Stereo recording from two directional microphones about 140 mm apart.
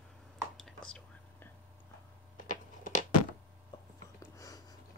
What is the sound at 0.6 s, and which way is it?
Whispering, 5° left (ahead or behind).